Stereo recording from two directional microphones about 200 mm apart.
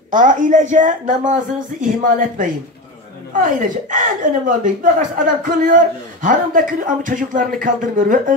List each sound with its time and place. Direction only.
0.1 s speech: 40° right (ahead or behind)